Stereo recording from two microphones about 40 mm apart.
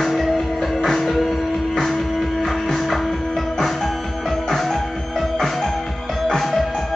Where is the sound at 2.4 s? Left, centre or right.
Centre.